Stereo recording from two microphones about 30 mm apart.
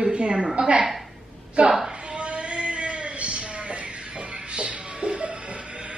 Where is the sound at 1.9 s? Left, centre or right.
Right.